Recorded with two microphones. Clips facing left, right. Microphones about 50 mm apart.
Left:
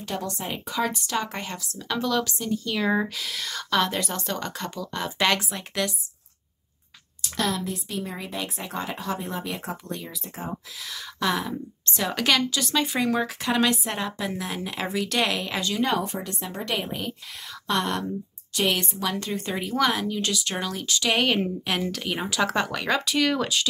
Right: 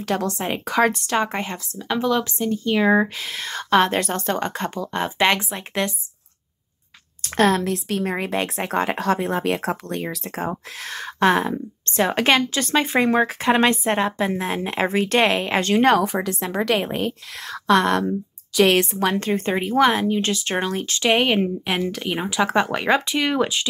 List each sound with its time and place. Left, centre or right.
0.0 s speech: right
7.2 s a sound: right
7.6 s speech: right
15.6 s speech: right
15.9 s a woman's voice: right
16.8 s a woman's voice: right
18.8 s speech: right